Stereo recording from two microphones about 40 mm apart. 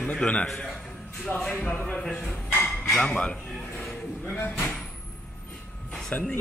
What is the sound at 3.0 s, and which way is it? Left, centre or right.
Speech, left.